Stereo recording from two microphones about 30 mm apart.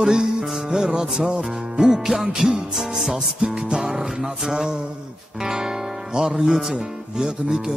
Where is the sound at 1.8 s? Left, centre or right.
Centre.